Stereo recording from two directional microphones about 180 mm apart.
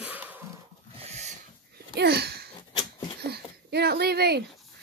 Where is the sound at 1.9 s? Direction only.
65° right (ahead or behind).